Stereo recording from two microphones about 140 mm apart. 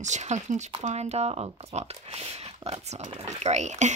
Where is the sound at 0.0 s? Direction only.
55° right (ahead or behind).